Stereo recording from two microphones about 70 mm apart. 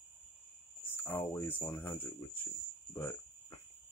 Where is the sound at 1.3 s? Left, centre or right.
Left.